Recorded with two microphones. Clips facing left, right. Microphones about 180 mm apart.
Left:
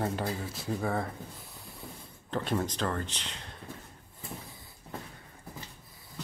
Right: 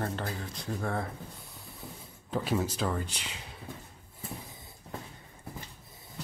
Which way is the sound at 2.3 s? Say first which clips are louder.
Right 1 dB; 5° right (ahead or behind).